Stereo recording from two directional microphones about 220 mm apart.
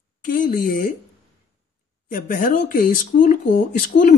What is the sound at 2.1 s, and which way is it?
Speech, 40° left (ahead or behind).